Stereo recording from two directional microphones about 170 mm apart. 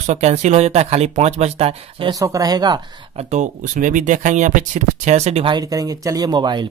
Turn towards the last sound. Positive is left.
turn(degrees=-25)  # may be behind; listen again after turning